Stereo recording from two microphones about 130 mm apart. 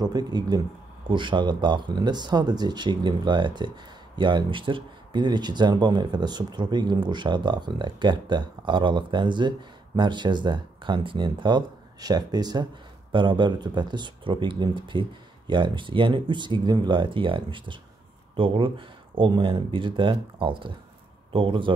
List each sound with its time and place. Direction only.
0.0 s speech: 30° right (ahead or behind)